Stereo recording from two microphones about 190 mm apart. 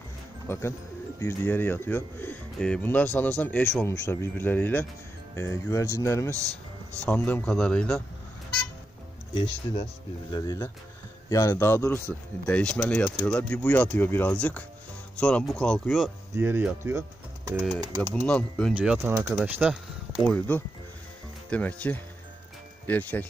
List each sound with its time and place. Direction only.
0.5 s speech: 15° left (ahead or behind)
6.3 s a man's voice: 15° right (ahead or behind)
7.1 s speech: 10° left (ahead or behind)
9.3 s speech: 30° left (ahead or behind); by 16.1 s centre (ahead or behind)
16.3 s speech: 10° right (ahead or behind)
18.2 s speech: 5° left (ahead or behind)
18.8 s speech: 10° right (ahead or behind)
20.2 s speech: 10° left (ahead or behind)